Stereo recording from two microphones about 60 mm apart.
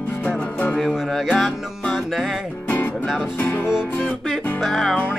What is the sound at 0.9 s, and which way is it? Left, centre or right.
Music, centre.